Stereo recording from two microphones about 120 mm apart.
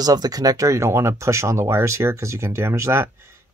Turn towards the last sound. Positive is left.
turn(degrees=-20)  # may be behind; listen again after turning